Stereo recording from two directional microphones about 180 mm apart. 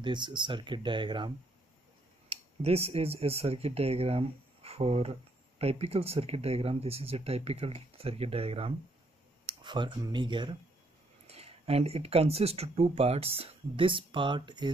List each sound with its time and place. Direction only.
0.0 s speech: 25° right (ahead or behind)
2.6 s speech: 35° right (ahead or behind)